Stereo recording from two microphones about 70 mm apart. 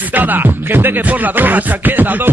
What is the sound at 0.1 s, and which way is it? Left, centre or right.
Music, right.